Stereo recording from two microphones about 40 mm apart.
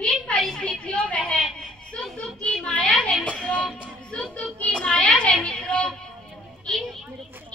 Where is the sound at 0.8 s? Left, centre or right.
Left.